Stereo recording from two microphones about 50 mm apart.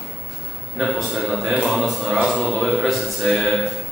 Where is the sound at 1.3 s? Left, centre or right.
Centre.